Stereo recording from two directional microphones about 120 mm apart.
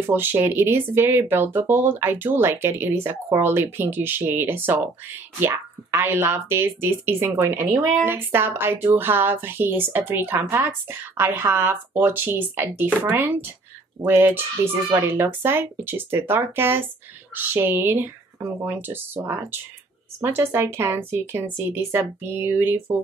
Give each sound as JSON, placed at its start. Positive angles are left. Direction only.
{"t": 0.0, "sound": "speech", "side_deg": -20}